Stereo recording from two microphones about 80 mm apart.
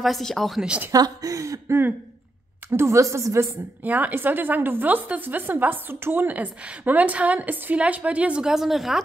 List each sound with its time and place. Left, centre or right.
0.0 s speech: centre
0.6 s a woman's voice: centre
0.9 s speech: right
3.8 s a woman's voice: right; by 9.0 s centre